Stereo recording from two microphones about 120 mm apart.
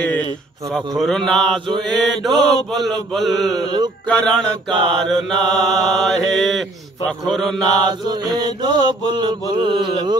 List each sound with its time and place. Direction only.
0.7 s mantra: centre (ahead or behind)
3.5 s mantra: 40° right (ahead or behind)
4.1 s a sound: 5° left (ahead or behind)
5.0 s mantra: centre (ahead or behind)
7.8 s mantra: 35° right (ahead or behind)